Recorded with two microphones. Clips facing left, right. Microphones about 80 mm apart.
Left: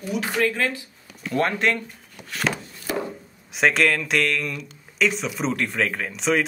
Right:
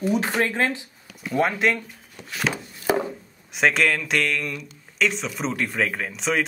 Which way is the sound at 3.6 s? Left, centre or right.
Centre.